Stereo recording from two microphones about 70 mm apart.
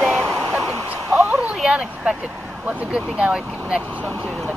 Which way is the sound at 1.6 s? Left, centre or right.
Centre.